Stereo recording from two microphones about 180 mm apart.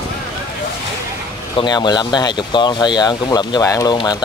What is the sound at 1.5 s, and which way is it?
Speech, 25° left (ahead or behind).